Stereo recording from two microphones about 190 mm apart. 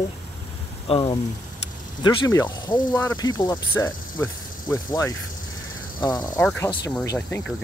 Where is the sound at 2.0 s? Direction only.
20° left (ahead or behind).